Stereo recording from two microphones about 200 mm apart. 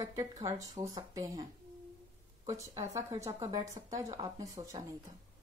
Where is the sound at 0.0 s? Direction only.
15° right (ahead or behind).